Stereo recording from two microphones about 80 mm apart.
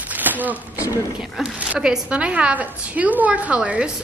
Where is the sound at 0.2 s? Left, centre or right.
Right.